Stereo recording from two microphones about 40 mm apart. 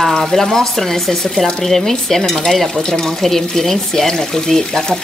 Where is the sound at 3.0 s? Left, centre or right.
Centre.